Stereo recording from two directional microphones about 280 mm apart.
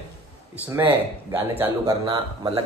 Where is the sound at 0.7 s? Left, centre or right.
Centre.